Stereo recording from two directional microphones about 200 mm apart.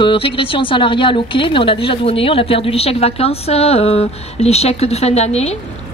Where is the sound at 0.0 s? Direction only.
25° left (ahead or behind).